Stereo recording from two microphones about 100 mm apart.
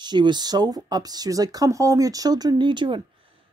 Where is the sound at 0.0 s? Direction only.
45° right (ahead or behind).